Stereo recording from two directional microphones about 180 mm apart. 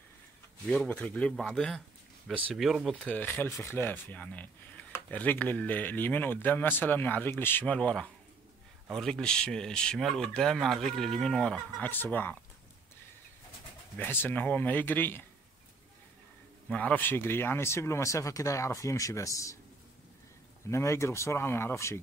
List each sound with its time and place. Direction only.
0.7 s speech: 10° left (ahead or behind)
3.1 s speech: 10° left (ahead or behind)
13.9 s speech: 10° left (ahead or behind)
16.6 s speech: 10° left (ahead or behind)
20.7 s speech: 15° left (ahead or behind)